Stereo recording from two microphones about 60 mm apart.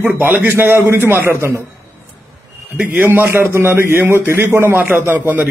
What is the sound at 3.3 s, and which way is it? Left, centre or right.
A man's voice, right.